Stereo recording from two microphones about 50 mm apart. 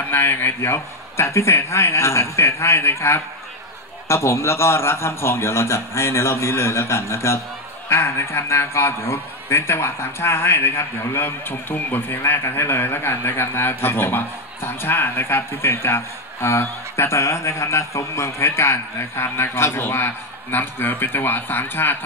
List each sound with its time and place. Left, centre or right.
0.1 s a man's voice: left
7.9 s a man's voice: left
20.5 s speech: left